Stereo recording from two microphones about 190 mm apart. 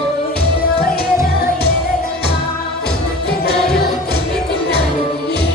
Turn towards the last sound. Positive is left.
turn(degrees=5)  # may be behind; listen again after turning